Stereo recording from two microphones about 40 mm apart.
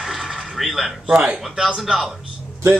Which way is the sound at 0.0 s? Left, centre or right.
Centre.